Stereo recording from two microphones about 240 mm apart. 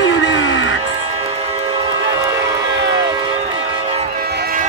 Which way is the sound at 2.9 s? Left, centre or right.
Centre.